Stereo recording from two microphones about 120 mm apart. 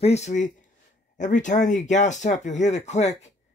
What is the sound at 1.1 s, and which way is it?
Speech, 90° left.